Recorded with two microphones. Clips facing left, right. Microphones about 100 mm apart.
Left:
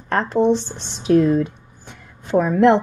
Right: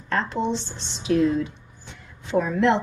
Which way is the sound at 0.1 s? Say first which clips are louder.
Left 7 dB; 50° left (ahead or behind).